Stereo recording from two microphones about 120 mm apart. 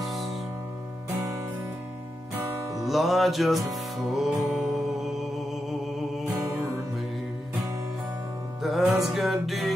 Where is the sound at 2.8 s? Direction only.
Centre (ahead or behind).